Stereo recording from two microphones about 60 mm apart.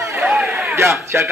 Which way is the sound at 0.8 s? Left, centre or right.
Right.